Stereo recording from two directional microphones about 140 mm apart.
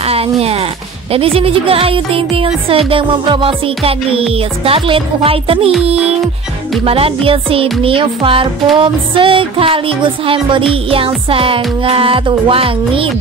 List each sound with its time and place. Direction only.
0.0 s speech: 45° right (ahead or behind)
1.1 s music: 45° right (ahead or behind)
6.8 s music: 40° right (ahead or behind)